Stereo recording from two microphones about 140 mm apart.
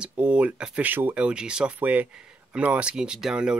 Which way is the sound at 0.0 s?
10° right (ahead or behind).